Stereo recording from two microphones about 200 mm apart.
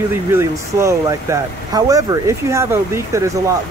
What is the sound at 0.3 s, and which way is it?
Speech, 15° right (ahead or behind).